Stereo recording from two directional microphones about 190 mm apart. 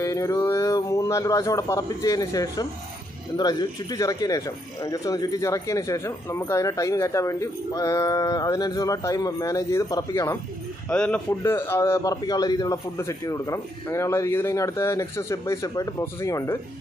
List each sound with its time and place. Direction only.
0.0 s speech: 15° left (ahead or behind)